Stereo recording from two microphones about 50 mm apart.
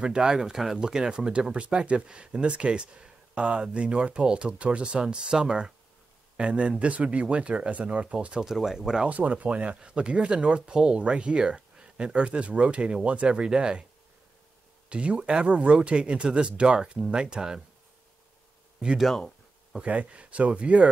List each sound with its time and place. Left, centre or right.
0.0 s speech: centre
8.5 s speech: centre
9.0 s speech: right
14.9 s speech: right
18.9 s a sound: centre
19.8 s speech: right